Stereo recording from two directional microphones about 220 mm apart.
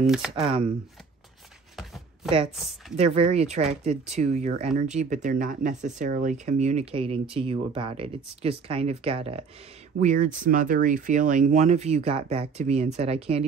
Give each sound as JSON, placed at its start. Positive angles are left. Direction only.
{"t": 0.0, "sound": "speech", "side_deg": -5}
{"t": 0.4, "sound": "speech", "side_deg": -25}
{"t": 3.0, "sound": "speech", "side_deg": -30}